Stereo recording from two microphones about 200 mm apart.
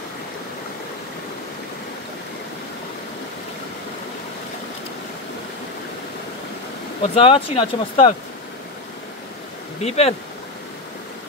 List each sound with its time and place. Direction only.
7.0 s speech: 30° left (ahead or behind)
9.8 s speech: 30° left (ahead or behind)